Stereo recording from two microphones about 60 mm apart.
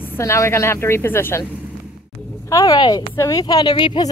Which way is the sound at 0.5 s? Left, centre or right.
Left.